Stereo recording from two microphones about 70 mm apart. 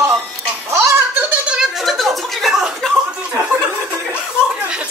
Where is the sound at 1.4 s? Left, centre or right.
Centre.